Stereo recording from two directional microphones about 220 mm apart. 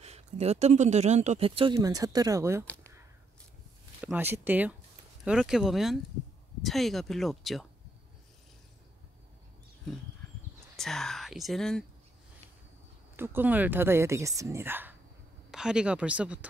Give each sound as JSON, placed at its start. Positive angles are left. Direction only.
{"t": 0.0, "sound": "speech", "side_deg": -30}
{"t": 4.0, "sound": "speech", "side_deg": -5}
{"t": 10.8, "sound": "speech", "side_deg": 0}
{"t": 13.1, "sound": "speech", "side_deg": -10}